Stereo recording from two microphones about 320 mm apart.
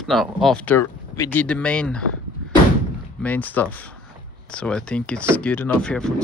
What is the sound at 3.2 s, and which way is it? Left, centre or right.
A man's voice, centre.